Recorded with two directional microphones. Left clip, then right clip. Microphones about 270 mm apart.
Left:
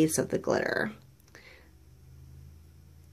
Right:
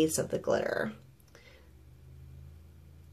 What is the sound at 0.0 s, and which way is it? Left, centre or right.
Speech, left.